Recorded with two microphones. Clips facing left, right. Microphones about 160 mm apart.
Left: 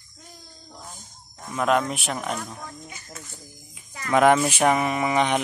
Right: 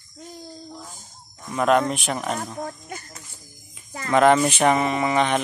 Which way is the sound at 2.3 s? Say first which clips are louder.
Right 4 dB; 50° right (ahead or behind).